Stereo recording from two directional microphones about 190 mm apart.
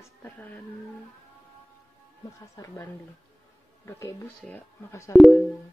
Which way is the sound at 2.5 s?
15° left (ahead or behind).